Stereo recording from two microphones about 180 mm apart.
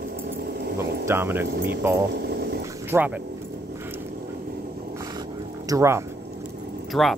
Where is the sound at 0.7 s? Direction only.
15° right (ahead or behind).